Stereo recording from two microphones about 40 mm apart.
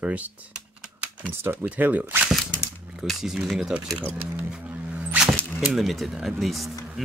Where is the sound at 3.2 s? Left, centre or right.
Centre.